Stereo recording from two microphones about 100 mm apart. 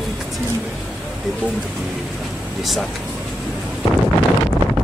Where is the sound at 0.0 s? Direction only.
Centre (ahead or behind).